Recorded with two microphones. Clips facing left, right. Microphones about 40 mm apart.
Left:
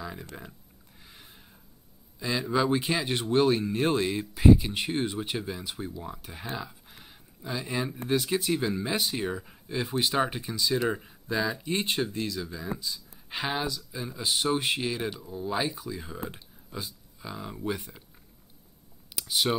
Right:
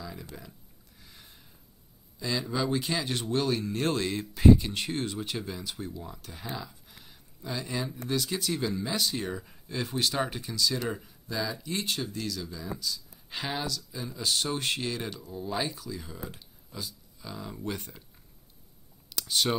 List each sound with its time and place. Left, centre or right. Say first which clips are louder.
0.0 s a sound: left 3 dB; left
2.1 s speech: left 4 dB; centre
19.1 s speech: left 1 dB; centre